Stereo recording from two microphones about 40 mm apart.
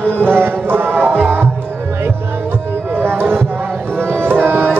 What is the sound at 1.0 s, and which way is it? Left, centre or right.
Music, right.